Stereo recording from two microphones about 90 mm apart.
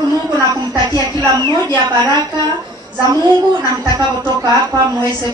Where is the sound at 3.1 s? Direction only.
50° right (ahead or behind).